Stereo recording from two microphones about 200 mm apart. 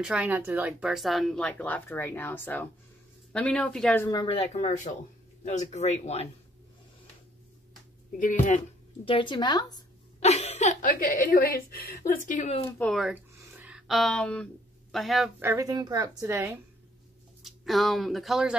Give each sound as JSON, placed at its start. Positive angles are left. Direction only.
{"t": 0.0, "sound": "speech", "side_deg": -5}
{"t": 4.2, "sound": "speech", "side_deg": 30}
{"t": 8.1, "sound": "speech", "side_deg": 40}
{"t": 10.2, "sound": "a woman's voice", "side_deg": 35}
{"t": 12.6, "sound": "speech", "side_deg": 5}
{"t": 13.3, "sound": "a sound", "side_deg": -10}
{"t": 15.4, "sound": "a woman's voice", "side_deg": -15}
{"t": 17.4, "sound": "speech", "side_deg": 0}